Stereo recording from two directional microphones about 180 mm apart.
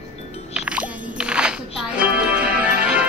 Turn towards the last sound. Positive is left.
turn(degrees=-5)  # may be behind; listen again after turning